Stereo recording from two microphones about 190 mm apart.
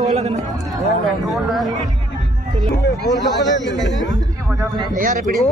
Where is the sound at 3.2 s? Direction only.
70° left (ahead or behind).